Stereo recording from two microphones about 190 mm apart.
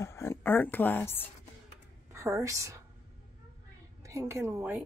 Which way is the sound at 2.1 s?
15° right (ahead or behind).